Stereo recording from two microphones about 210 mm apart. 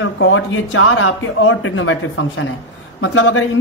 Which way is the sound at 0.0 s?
65° left (ahead or behind).